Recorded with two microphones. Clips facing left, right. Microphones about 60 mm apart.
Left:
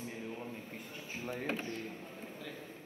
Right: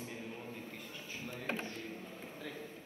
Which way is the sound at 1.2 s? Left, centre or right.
Left.